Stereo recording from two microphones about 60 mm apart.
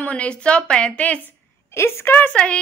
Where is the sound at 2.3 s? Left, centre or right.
Centre.